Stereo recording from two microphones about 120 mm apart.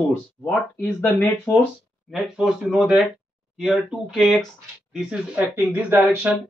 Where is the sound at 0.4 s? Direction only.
15° left (ahead or behind).